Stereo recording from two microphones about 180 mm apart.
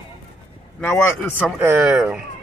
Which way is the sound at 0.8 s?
10° left (ahead or behind).